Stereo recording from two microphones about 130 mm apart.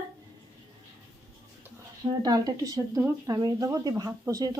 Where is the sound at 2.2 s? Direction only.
30° right (ahead or behind).